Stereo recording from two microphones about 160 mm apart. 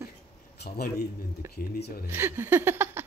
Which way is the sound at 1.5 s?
75° left (ahead or behind).